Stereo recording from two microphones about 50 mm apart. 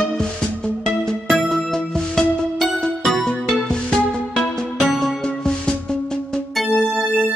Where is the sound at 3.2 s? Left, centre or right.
Centre.